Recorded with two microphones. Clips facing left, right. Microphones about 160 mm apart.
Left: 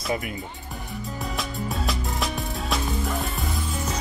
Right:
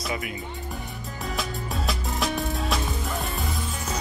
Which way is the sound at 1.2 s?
Centre (ahead or behind).